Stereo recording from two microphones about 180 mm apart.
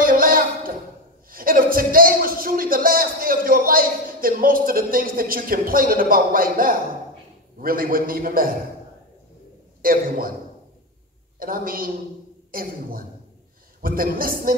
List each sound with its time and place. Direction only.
0.0 s a sound: 55° right (ahead or behind)
1.3 s a man's voice: 55° right (ahead or behind)
9.8 s a man's voice: 55° right (ahead or behind)
11.3 s a man's voice: 55° right (ahead or behind)